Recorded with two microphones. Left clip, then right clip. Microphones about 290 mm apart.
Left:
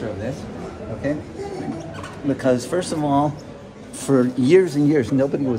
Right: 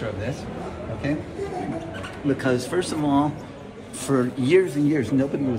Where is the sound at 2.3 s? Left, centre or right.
Left.